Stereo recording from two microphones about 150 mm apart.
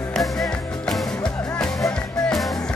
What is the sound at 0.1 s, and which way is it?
Music, centre (ahead or behind).